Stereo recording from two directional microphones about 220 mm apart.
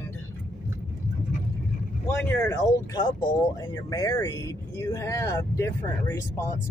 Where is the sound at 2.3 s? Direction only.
10° left (ahead or behind).